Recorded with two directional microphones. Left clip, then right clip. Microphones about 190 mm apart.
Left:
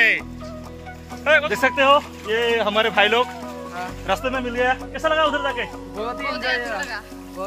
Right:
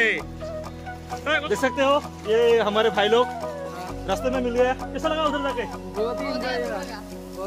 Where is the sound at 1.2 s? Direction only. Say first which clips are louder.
Left 7 dB; 10° right (ahead or behind).